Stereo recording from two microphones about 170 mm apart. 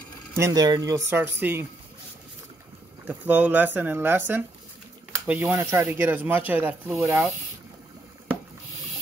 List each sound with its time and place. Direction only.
0.4 s speech: 20° right (ahead or behind)
3.1 s speech: 10° right (ahead or behind)